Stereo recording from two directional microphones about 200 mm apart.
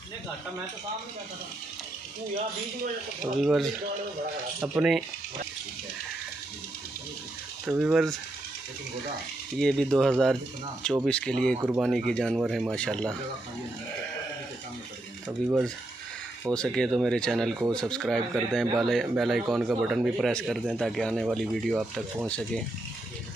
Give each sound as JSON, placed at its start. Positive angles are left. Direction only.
{"t": 3.3, "sound": "speech", "side_deg": 0}
{"t": 7.6, "sound": "speech", "side_deg": -5}
{"t": 9.6, "sound": "speech", "side_deg": 0}
{"t": 11.6, "sound": "speech", "side_deg": -5}
{"t": 15.2, "sound": "speech", "side_deg": -5}